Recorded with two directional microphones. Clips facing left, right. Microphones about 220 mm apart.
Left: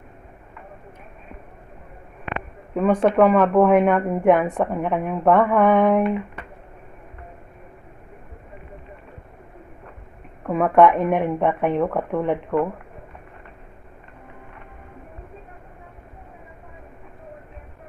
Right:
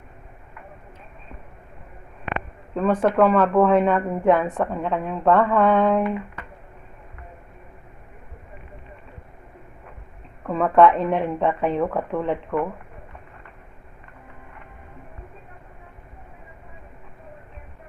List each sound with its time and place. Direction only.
2.7 s a woman's voice: 10° left (ahead or behind)
10.4 s a woman's voice: 10° left (ahead or behind)
11.8 s speech: centre (ahead or behind)
12.1 s a woman's voice: 15° left (ahead or behind)